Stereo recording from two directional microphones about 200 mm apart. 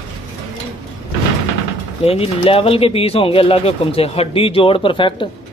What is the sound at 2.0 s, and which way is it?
Speech, 30° left (ahead or behind).